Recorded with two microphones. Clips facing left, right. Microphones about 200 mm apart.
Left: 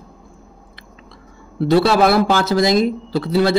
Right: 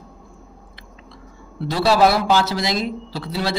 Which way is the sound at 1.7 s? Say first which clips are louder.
Left 3 dB; 55° left (ahead or behind).